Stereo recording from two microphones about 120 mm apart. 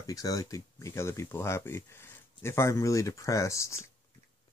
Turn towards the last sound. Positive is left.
turn(degrees=25)  # may be behind; listen again after turning